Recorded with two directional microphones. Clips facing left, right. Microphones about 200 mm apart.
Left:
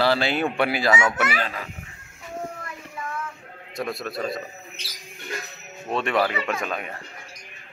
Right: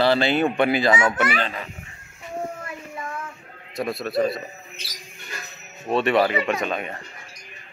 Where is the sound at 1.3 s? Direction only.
25° right (ahead or behind).